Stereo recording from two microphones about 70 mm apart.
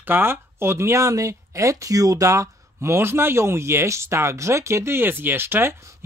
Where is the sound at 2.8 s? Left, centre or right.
Right.